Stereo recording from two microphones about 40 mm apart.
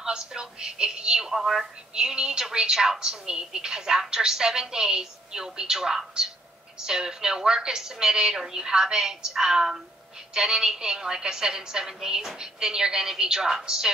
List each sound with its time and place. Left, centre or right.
0.0 s a sound: centre
1.3 s a woman's voice: centre
2.0 s a woman's voice: centre